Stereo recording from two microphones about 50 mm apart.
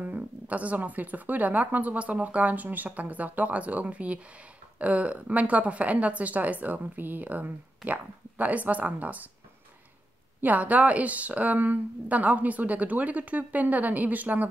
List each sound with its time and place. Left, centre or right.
0.0 s a woman's voice: right
10.4 s a woman's voice: right